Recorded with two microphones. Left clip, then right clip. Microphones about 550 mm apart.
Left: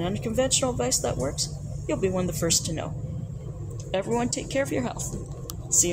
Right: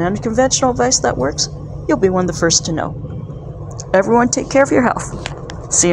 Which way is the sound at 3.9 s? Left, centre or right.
Left.